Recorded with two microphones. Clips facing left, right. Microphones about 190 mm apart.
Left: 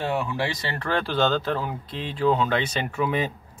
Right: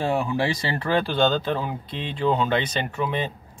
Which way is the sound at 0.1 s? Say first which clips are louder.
Right 3 dB; 30° right (ahead or behind).